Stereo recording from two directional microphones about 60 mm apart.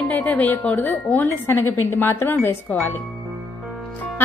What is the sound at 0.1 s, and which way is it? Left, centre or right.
Speech, left.